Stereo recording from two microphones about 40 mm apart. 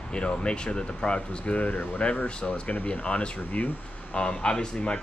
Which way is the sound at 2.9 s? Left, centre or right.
Left.